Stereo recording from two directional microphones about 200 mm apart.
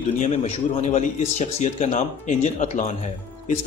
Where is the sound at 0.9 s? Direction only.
35° left (ahead or behind).